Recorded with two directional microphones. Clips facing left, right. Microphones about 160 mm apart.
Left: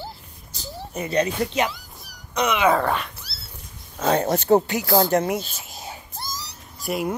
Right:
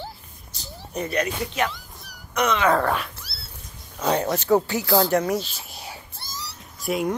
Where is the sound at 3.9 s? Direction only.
45° left (ahead or behind).